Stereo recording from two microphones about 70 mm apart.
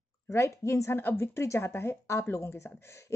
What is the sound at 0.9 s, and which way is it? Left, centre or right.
A woman's voice, left.